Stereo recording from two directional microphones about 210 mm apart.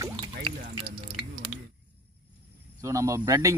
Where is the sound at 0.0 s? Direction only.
25° right (ahead or behind).